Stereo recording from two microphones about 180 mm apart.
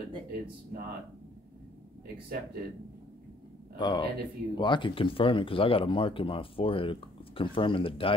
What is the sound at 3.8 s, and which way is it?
Speech, 25° left (ahead or behind).